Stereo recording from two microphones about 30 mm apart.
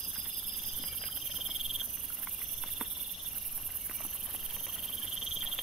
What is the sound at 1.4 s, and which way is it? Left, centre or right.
Frog, centre.